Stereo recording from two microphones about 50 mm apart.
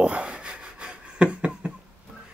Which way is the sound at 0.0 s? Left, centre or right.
Right.